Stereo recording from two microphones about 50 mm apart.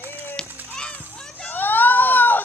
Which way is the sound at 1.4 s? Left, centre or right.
Left.